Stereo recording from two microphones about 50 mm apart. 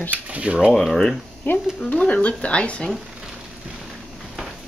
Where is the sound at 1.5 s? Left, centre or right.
Left.